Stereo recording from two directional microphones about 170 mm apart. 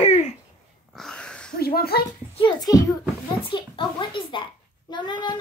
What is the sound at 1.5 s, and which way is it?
Speech, 65° left (ahead or behind).